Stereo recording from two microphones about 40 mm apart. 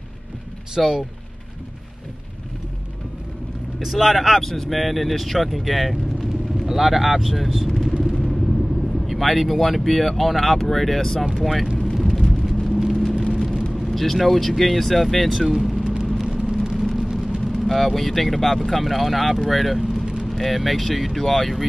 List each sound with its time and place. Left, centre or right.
0.7 s speech: centre
3.8 s speech: centre
7.7 s vehicle: centre
8.0 s vehicle: centre
9.4 s speech: centre
11.8 s vehicle: centre
13.8 s speech: centre
16.3 s vehicle: centre
16.7 s vehicle: centre
17.0 s vehicle: right
17.5 s speech: centre